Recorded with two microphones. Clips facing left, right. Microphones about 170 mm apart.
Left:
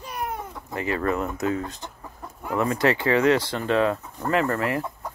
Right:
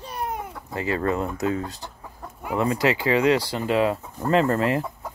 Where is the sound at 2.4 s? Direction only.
20° right (ahead or behind).